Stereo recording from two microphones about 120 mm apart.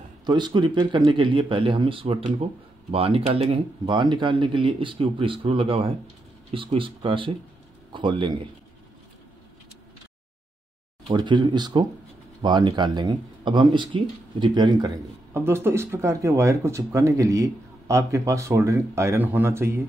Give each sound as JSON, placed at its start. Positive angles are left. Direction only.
{"t": 0.2, "sound": "speech", "side_deg": -35}
{"t": 11.1, "sound": "speech", "side_deg": -40}
{"t": 15.3, "sound": "speech", "side_deg": -20}